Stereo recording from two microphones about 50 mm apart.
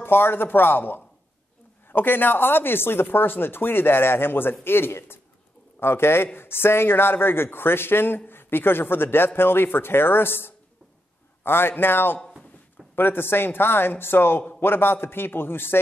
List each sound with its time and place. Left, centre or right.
0.0 s speech: left